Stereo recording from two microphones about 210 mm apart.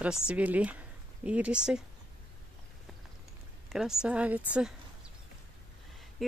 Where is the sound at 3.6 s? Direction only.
Centre (ahead or behind).